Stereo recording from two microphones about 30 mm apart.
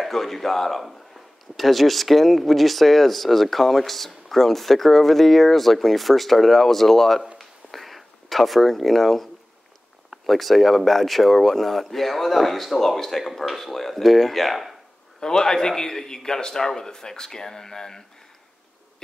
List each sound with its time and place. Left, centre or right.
0.0 s a man's voice: centre
7.3 s a sound: centre
10.2 s a man's voice: centre
15.1 s a man's voice: left